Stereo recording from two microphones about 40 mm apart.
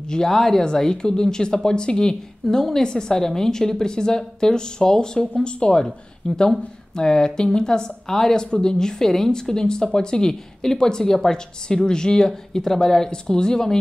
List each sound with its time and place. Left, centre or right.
0.0 s speech: centre
0.3 s a woman's voice: centre